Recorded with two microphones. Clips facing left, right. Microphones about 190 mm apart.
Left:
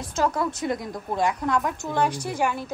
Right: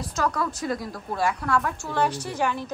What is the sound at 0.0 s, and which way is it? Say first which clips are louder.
A woman's voice: left 2 dB; 25° left (ahead or behind).